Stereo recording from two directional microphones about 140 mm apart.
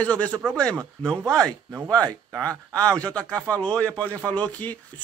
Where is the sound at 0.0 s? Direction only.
10° left (ahead or behind).